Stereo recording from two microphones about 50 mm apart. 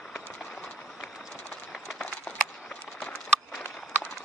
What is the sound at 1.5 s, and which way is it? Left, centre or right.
Run, centre.